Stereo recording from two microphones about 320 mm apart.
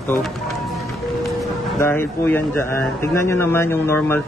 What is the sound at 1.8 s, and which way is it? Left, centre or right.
Speech, centre.